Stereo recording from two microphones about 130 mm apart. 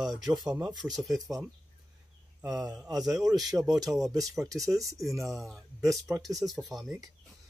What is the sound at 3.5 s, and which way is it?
Speech, 15° right (ahead or behind).